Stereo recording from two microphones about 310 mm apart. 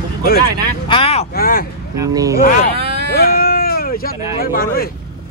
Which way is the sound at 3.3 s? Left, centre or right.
Left.